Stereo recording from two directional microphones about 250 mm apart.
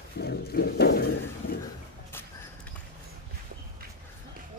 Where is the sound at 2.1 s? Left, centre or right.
Centre.